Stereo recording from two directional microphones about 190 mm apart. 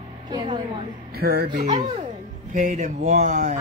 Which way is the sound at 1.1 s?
55° right (ahead or behind).